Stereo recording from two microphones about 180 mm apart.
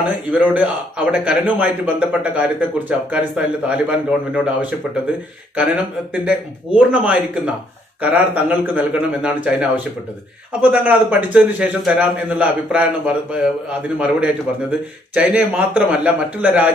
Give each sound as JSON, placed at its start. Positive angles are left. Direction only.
{"t": 0.0, "sound": "a man's voice", "side_deg": -5}
{"t": 6.2, "sound": "a man's voice", "side_deg": -5}